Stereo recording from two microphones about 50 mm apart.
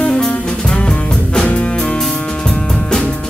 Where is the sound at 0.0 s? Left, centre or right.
Centre.